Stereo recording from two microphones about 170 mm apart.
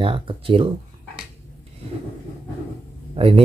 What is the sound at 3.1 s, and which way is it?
Speech, 35° right (ahead or behind).